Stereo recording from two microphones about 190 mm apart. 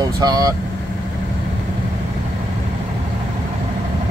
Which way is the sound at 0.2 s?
20° right (ahead or behind).